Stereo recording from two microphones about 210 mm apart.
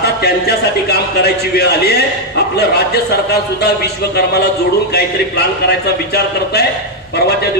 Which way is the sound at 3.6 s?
50° left (ahead or behind).